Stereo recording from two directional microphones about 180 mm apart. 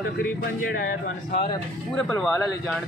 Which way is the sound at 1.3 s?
30° left (ahead or behind).